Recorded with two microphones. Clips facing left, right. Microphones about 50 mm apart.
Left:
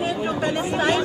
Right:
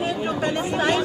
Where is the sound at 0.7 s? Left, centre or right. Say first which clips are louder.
Even; centre.